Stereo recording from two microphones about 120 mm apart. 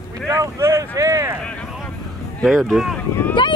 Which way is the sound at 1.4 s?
10° left (ahead or behind).